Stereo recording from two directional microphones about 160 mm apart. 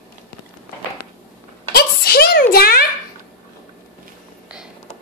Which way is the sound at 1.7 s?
75° left (ahead or behind).